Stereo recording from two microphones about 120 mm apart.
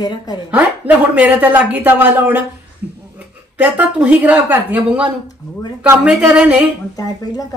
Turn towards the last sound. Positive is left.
turn(degrees=30)  # may be behind; listen again after turning